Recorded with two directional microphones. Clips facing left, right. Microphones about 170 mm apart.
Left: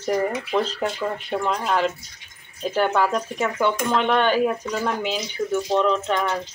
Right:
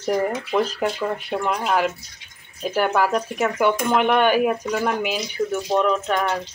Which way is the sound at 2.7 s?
5° right (ahead or behind).